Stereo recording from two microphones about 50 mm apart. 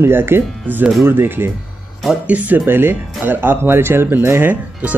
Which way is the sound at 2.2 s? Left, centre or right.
Right.